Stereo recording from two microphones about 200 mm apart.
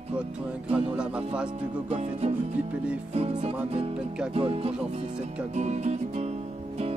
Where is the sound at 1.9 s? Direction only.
30° right (ahead or behind).